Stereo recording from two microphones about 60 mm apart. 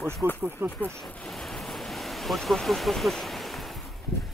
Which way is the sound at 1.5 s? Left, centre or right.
Centre.